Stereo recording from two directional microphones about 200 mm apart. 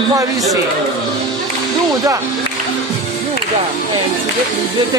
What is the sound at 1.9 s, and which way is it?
Speech, 15° right (ahead or behind).